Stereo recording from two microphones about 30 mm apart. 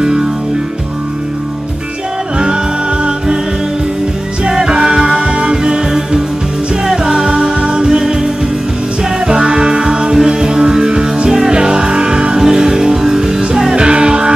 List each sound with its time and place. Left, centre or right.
0.0 s music: right
2.3 s music: right
4.6 s music: right
5.9 s music: centre
8.0 s music: centre
9.3 s music: right
13.7 s music: right